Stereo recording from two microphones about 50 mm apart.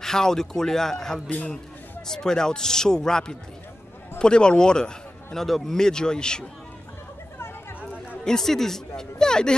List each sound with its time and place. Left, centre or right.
0.0 s a man's voice: centre
8.2 s speech: centre